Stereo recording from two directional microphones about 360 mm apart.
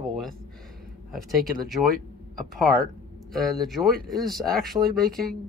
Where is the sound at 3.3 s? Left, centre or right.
Centre.